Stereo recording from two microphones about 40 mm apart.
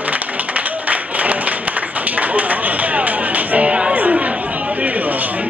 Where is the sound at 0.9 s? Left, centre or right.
Right.